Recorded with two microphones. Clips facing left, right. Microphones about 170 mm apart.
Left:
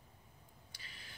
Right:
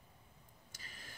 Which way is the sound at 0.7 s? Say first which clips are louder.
Right 3 dB; 45° right (ahead or behind).